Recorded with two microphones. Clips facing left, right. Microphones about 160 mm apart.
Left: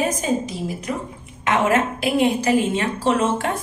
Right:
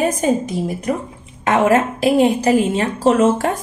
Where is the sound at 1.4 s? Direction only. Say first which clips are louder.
Right 4 dB; 35° right (ahead or behind).